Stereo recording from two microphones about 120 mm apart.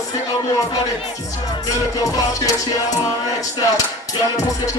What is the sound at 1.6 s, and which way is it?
Speech, 30° left (ahead or behind).